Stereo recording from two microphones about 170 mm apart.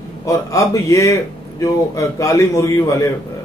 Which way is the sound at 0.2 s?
20° left (ahead or behind).